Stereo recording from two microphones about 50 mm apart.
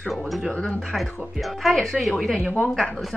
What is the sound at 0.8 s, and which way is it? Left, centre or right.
Speech, centre.